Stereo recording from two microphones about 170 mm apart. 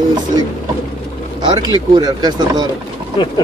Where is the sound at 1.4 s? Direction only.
25° right (ahead or behind).